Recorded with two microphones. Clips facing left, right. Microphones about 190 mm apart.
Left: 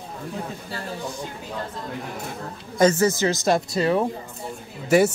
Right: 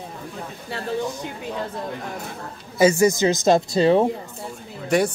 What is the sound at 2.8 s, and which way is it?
Speech, 10° right (ahead or behind).